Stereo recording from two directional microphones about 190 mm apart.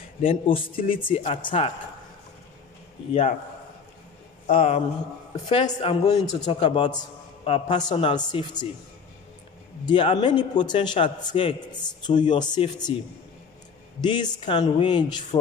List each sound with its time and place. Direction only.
0.2 s a man's voice: 30° left (ahead or behind)
3.1 s speech: 30° left (ahead or behind)
4.6 s a man's voice: 30° left (ahead or behind)
9.8 s a man's voice: 25° left (ahead or behind)
14.0 s a man's voice: 20° left (ahead or behind)